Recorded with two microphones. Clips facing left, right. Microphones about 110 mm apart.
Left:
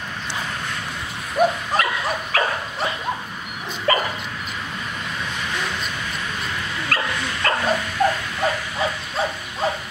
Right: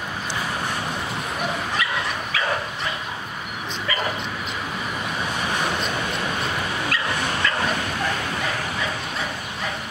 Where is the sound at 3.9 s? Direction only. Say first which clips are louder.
Left 8 dB; 45° left (ahead or behind).